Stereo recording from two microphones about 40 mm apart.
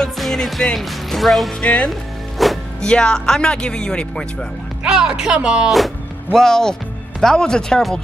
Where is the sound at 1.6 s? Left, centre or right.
Left.